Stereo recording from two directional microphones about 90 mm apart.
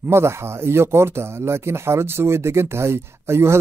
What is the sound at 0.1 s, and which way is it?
Speech, 30° right (ahead or behind).